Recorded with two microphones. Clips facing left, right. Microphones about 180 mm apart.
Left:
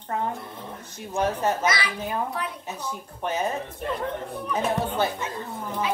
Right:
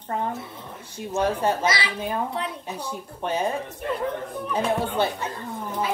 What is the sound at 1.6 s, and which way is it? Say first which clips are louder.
A woman's voice: right 1 dB; 25° right (ahead or behind).